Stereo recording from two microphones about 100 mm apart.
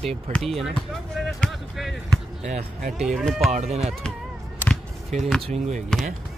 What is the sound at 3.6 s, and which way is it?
Speech, 90° right.